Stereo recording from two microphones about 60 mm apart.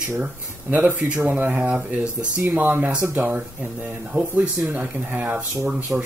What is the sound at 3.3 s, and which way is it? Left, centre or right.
Speech, right.